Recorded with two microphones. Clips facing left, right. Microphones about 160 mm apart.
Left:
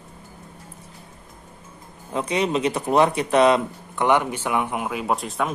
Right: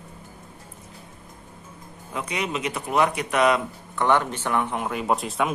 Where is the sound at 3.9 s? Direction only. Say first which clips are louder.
Left 2 dB; 15° left (ahead or behind); by 5.5 s centre (ahead or behind).